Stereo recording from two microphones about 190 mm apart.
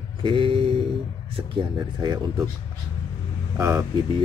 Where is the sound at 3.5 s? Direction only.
15° right (ahead or behind).